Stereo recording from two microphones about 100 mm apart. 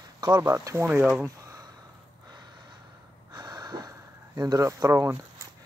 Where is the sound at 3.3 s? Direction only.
40° right (ahead or behind).